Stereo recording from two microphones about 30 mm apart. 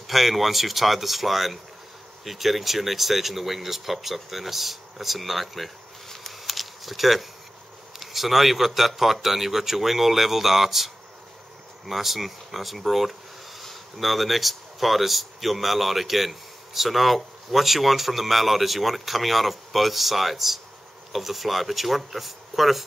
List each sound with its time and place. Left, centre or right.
0.0 s speech: centre
6.4 s a sound: centre
8.0 s speech: centre